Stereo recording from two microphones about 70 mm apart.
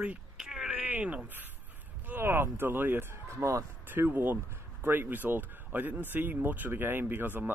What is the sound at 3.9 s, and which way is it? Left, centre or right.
Speech, right.